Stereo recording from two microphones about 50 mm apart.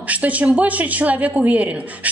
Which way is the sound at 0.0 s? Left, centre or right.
Right.